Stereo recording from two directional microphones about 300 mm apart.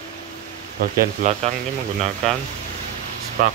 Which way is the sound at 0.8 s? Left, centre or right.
Right.